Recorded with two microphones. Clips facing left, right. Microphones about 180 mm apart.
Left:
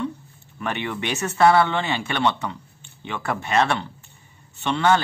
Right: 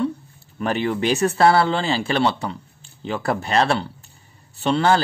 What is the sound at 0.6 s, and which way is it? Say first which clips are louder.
A man's voice: right 6 dB; 35° right (ahead or behind).